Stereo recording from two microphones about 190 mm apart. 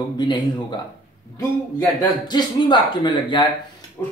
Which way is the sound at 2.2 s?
25° left (ahead or behind).